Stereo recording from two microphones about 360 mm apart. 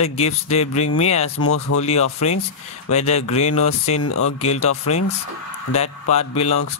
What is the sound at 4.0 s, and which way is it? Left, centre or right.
Speech, left.